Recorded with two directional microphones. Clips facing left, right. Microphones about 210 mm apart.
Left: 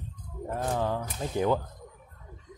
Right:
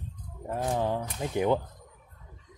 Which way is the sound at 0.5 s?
20° right (ahead or behind).